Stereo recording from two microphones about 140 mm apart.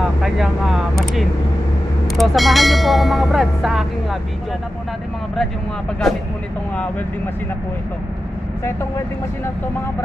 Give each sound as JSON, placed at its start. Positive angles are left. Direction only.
{"t": 0.0, "sound": "speech", "side_deg": -5}
{"t": 6.0, "sound": "speech", "side_deg": 0}